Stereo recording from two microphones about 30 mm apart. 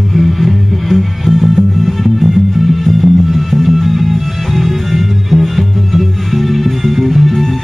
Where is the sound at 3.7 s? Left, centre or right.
Centre.